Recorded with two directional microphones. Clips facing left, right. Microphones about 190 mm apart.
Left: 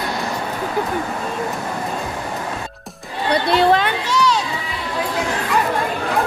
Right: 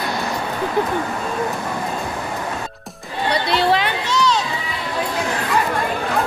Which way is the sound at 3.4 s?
50° left (ahead or behind).